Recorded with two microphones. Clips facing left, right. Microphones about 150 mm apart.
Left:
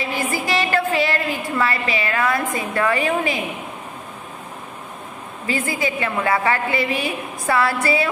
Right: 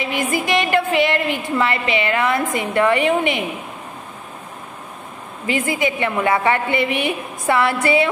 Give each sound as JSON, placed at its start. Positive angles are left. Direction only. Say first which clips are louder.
{"t": 0.0, "sound": "music", "louder": "right 2 dB", "side_deg": -20}
{"t": 1.6, "sound": "a woman's voice", "louder": "right 2 dB", "side_deg": -25}
{"t": 5.5, "sound": "a woman's voice", "louder": "right 3 dB", "side_deg": -20}